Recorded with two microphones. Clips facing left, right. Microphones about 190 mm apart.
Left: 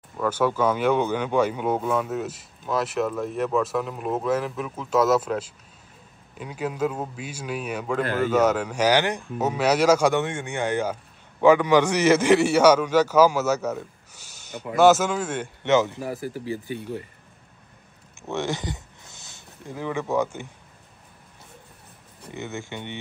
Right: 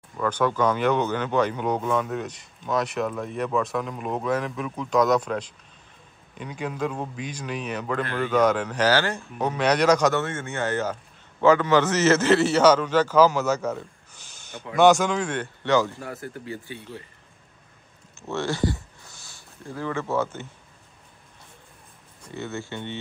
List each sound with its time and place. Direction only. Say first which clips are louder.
0.2 s a man's voice: left 1 dB; 10° left (ahead or behind)
15.6 s speech: left 2 dB; 20° left (ahead or behind)
16.0 s a man's voice: left 5 dB; 10° left (ahead or behind)
18.2 s speech: right 2 dB; 15° left (ahead or behind)
22.3 s a man's voice: right 1 dB; 15° left (ahead or behind)